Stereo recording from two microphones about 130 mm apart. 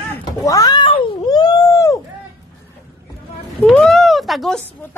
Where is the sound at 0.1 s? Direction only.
25° left (ahead or behind).